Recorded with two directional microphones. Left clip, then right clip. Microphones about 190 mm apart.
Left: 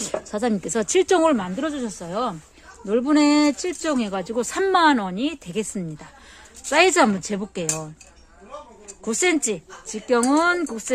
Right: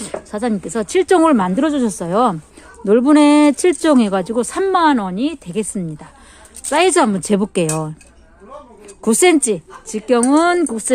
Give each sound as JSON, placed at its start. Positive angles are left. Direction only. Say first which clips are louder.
{"t": 0.0, "sound": "speech", "louder": "right 2 dB", "side_deg": 10}
{"t": 1.2, "sound": "a woman's voice", "louder": "right 6 dB", "side_deg": -30}
{"t": 1.5, "sound": "speech", "louder": "right 10 dB", "side_deg": -50}
{"t": 4.4, "sound": "speech", "louder": "right 2 dB", "side_deg": 0}
{"t": 7.2, "sound": "a woman's voice", "louder": "right 11 dB", "side_deg": -35}
{"t": 9.0, "sound": "speech", "louder": "right 8 dB", "side_deg": -35}